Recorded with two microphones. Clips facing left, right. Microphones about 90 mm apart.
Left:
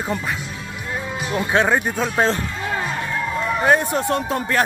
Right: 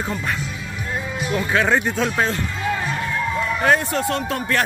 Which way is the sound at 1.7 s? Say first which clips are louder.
Even; 10° left (ahead or behind).